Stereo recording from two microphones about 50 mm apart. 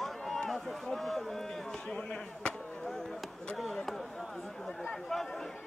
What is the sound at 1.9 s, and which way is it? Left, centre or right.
Speech, left.